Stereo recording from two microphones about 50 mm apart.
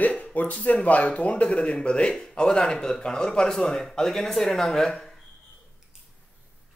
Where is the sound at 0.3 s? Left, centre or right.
Left; by 5.0 s centre.